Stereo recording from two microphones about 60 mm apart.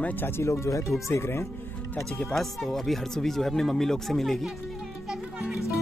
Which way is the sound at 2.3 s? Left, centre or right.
Centre.